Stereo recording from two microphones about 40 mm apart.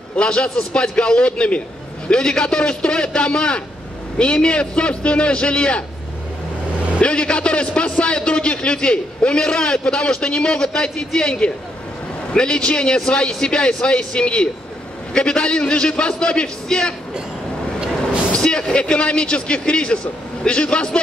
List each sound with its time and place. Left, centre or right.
0.2 s a man's voice: left
7.0 s a man's voice: left
17.7 s train: right
18.3 s a man's voice: left